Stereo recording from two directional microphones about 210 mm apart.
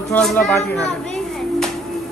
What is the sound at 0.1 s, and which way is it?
Speech, 5° left (ahead or behind).